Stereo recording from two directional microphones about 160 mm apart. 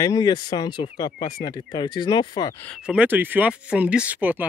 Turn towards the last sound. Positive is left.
turn(degrees=-10)  # may be behind; listen again after turning